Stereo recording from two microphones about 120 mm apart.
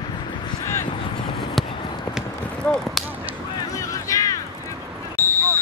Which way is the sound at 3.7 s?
30° left (ahead or behind).